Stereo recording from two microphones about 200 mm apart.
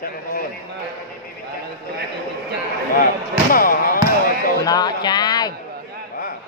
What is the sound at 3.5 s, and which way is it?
Basketball bounce, 45° left (ahead or behind).